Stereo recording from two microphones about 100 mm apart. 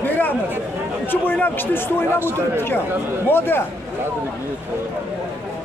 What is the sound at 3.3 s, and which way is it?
Speech, 20° left (ahead or behind).